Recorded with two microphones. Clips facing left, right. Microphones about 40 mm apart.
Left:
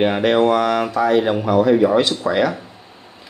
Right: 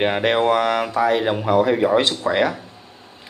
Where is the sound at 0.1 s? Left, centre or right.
Right.